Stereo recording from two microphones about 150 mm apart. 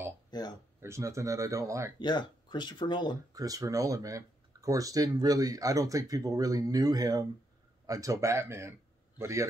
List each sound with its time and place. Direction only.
0.3 s speech: 25° left (ahead or behind)
0.7 s speech: 20° right (ahead or behind)
2.0 s speech: 30° left (ahead or behind)
3.3 s speech: 25° right (ahead or behind)